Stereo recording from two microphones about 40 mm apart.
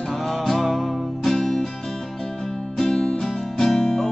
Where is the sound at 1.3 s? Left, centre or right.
Centre.